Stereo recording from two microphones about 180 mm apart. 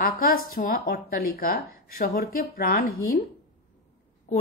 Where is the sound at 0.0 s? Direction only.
55° left (ahead or behind).